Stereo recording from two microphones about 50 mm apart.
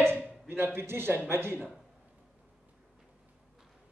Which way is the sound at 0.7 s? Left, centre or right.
Right.